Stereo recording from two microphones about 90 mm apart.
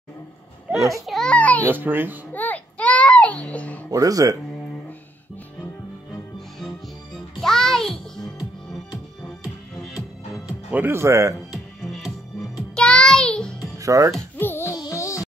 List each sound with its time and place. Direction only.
1.0 s a child's voice: centre (ahead or behind)
1.3 s a child's voice: 15° left (ahead or behind)
1.7 s speech: 20° right (ahead or behind)
2.3 s a sound: 20° left (ahead or behind)
3.9 s speech: 40° right (ahead or behind)
7.3 s music: 5° left (ahead or behind)
10.7 s speech: 25° right (ahead or behind)
11.5 s music: centre (ahead or behind)
13.7 s speech: 35° right (ahead or behind)
14.4 s music: 25° left (ahead or behind)